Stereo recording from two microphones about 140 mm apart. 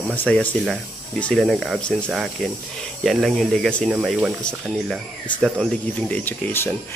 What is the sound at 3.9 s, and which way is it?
Speech, 5° right (ahead or behind).